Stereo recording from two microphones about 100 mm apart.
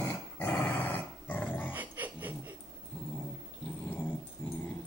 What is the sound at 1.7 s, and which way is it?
Music, 15° right (ahead or behind).